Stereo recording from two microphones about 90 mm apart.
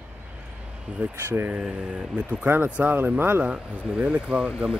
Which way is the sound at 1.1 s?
25° right (ahead or behind).